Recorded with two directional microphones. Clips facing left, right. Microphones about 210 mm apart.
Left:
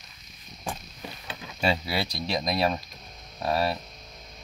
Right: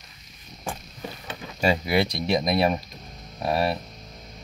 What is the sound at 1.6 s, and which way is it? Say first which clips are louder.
Speech: right 5 dB; 15° right (ahead or behind).